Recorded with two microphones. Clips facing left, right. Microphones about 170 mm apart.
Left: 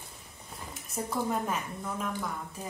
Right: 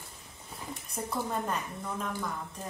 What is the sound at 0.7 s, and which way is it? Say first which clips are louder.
A woman's voice: left 1 dB; 5° left (ahead or behind).